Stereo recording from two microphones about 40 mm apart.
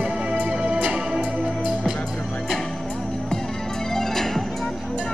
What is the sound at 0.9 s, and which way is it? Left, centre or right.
Music, centre.